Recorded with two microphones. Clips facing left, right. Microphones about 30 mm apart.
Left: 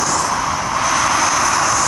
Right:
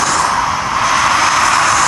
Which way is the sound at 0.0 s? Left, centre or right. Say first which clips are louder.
Right 5 dB; right.